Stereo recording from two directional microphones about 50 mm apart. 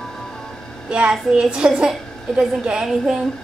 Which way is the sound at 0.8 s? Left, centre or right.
Centre.